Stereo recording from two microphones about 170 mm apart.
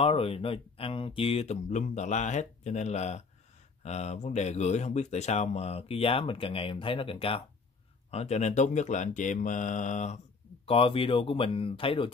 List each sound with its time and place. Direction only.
0.0 s speech: 35° left (ahead or behind)
10.7 s speech: 35° left (ahead or behind)